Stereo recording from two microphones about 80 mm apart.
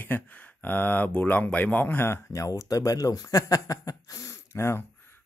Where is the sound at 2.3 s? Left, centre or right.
Left.